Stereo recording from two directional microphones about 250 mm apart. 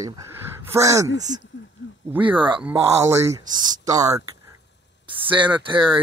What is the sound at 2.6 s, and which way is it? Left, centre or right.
Speech, centre.